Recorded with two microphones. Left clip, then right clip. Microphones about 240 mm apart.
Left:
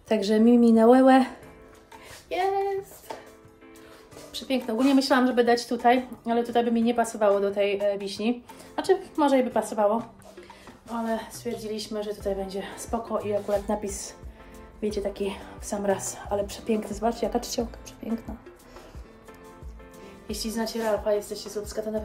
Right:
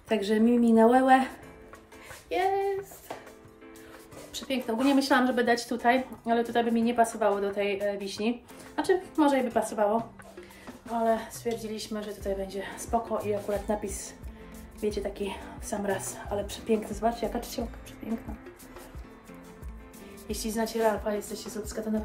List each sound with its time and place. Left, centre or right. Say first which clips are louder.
0.1 s a woman's voice: left 4 dB; centre
2.2 s child singing: left 1 dB; centre
4.3 s a woman's voice: left 3 dB; centre
11.1 s a woman's voice: right 3 dB; centre
20.2 s a woman's voice: left 1 dB; centre